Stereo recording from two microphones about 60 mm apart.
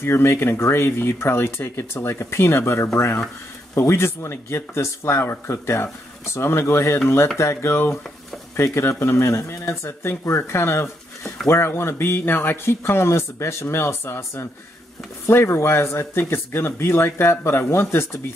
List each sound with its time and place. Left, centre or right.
0.0 s speech: left